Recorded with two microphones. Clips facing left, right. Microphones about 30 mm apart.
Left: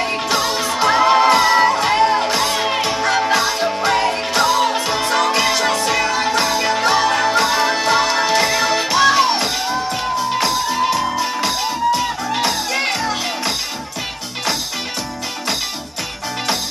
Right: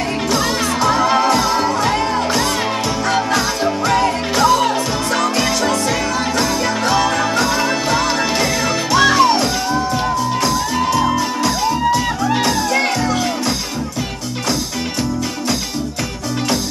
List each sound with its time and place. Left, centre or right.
0.8 s music: left
8.9 s music: centre
9.2 s music: centre